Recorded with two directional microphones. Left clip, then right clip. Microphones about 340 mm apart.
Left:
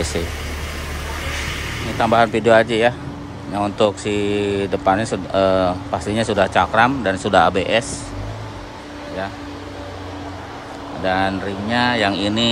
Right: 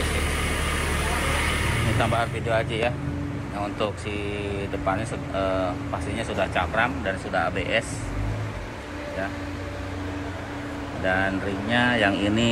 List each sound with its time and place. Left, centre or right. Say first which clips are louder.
2.0 s speech: left 13 dB; centre
4.1 s speech: left 10 dB; left
4.8 s speech: left 8 dB; centre
11.1 s speech: left 5 dB; centre